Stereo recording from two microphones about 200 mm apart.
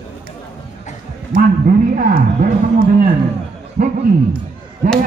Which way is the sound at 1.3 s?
40° right (ahead or behind).